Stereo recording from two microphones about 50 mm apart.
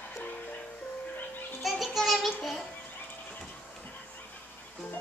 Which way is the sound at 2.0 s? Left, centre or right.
Centre.